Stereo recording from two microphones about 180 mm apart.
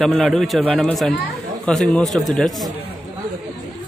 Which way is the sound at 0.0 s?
Centre (ahead or behind).